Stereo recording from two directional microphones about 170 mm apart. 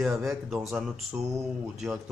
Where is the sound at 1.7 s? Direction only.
Centre (ahead or behind).